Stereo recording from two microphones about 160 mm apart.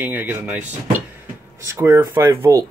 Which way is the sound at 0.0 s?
10° right (ahead or behind).